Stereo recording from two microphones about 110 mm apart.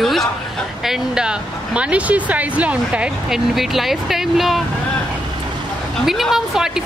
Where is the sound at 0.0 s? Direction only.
Centre (ahead or behind).